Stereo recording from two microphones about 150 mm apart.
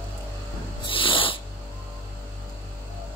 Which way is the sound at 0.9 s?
35° left (ahead or behind).